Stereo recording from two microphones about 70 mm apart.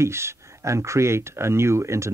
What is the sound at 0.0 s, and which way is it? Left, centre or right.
Speech, right.